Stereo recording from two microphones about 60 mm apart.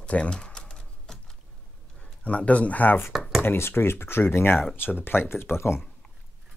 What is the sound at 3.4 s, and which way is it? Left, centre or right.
Speech, left.